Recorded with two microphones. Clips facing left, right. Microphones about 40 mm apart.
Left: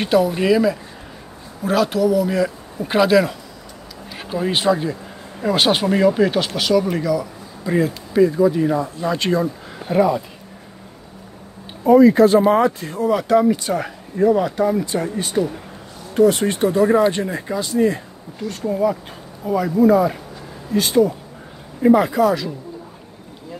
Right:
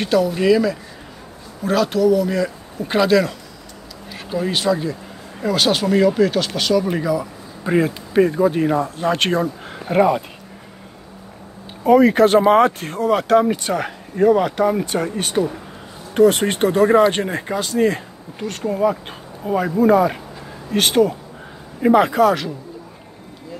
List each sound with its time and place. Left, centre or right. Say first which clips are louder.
0.0 s speech: even; centre
4.1 s a sound: even; centre
4.5 s speech: left 2 dB; left
6.5 s speech: left 1 dB; centre
6.9 s speech: even; centre
7.6 s speech: right 1 dB; right
11.8 s speech: left 1 dB; right